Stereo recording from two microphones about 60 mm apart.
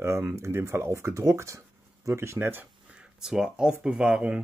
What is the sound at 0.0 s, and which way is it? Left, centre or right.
Speech, right.